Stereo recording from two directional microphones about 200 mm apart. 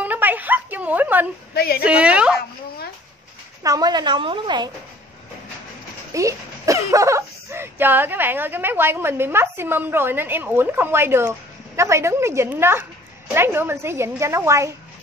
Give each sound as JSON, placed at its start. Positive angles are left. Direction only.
{"t": 0.0, "sound": "a sound", "side_deg": -10}
{"t": 1.5, "sound": "speech", "side_deg": 50}
{"t": 1.9, "sound": "speech", "side_deg": -5}
{"t": 3.6, "sound": "a woman's voice", "side_deg": -20}
{"t": 6.1, "sound": "speech", "side_deg": -15}